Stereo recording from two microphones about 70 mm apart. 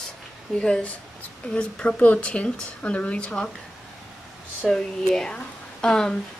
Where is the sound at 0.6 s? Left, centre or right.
Centre.